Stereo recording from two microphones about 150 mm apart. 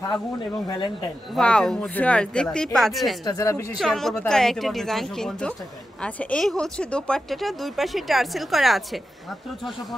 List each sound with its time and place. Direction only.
0.7 s speech: 30° left (ahead or behind)
1.3 s speech: 5° left (ahead or behind)
3.3 s a woman's voice: 20° left (ahead or behind)
3.7 s speech: centre (ahead or behind)